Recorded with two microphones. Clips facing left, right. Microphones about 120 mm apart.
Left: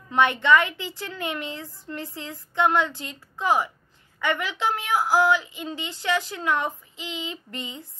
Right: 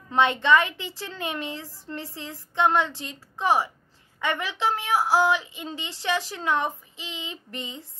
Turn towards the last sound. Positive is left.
turn(degrees=-25)  # may be behind; listen again after turning